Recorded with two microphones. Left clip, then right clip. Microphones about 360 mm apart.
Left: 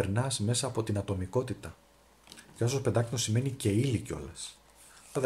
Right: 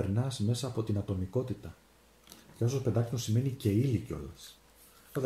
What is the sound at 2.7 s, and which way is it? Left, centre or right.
Speech, left.